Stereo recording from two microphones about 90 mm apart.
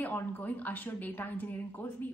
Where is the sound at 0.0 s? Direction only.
20° left (ahead or behind).